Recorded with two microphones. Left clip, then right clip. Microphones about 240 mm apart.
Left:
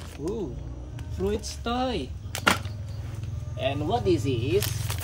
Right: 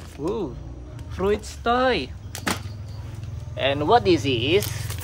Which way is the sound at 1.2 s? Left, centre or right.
Centre.